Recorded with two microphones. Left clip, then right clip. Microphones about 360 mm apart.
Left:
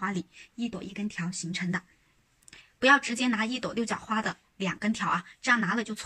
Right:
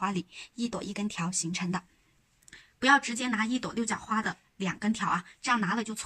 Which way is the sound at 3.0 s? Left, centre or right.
Centre.